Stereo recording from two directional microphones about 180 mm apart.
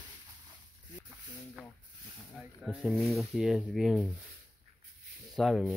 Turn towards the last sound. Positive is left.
turn(degrees=0)  # may be behind; listen again after turning